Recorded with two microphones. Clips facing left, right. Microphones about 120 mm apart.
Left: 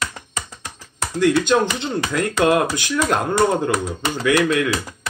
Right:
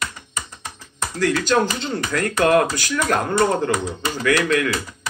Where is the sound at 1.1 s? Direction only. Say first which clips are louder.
Left 3 dB; 20° left (ahead or behind).